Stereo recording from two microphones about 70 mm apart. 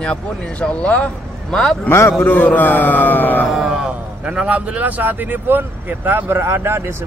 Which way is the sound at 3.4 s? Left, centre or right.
Centre.